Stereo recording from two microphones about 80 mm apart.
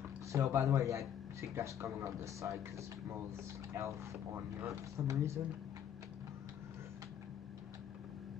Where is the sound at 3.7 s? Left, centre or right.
Right.